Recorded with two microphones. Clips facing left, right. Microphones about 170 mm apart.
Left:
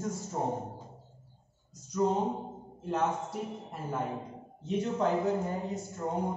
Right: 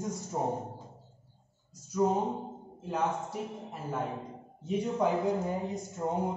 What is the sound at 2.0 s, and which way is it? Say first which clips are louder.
Speech: right 1 dB; 10° right (ahead or behind).